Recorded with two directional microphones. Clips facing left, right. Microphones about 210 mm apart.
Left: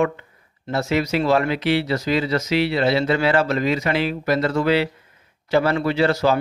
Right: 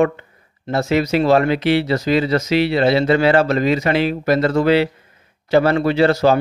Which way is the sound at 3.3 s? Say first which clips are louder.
Right 4 dB; 65° right (ahead or behind).